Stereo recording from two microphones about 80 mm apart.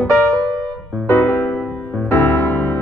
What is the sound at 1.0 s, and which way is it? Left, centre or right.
Music, left.